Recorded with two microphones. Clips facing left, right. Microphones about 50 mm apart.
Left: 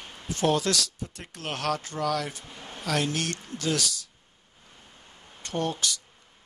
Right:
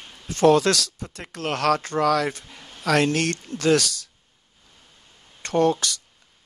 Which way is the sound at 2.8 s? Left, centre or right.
Right.